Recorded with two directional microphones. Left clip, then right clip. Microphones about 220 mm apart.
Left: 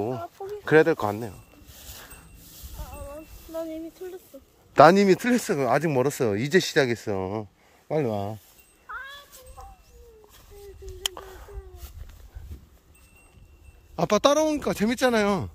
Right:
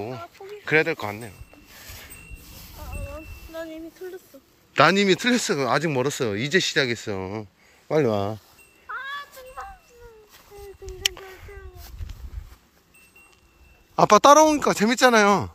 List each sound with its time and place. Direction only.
0.0 s speech: 40° left (ahead or behind)
3.5 s a sound: 55° left (ahead or behind)
4.7 s speech: 25° left (ahead or behind)
7.9 s speech: 5° left (ahead or behind)
11.0 s a sound: 35° left (ahead or behind)
13.9 s speech: 5° left (ahead or behind)